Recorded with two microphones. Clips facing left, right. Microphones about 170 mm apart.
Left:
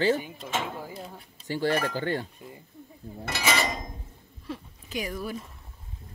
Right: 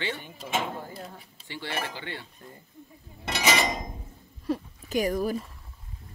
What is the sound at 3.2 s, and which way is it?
Dishes, 20° right (ahead or behind).